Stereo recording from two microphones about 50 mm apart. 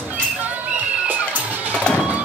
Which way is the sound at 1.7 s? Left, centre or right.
Left.